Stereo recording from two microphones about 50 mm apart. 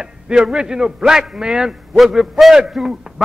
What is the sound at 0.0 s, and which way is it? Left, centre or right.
A man's voice, centre.